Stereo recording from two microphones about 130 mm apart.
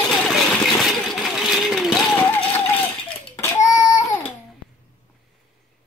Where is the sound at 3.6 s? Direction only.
25° left (ahead or behind).